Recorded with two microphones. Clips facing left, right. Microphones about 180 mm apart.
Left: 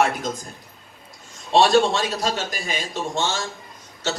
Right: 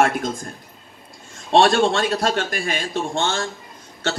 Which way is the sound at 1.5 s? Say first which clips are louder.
Right 1 dB; 55° right (ahead or behind).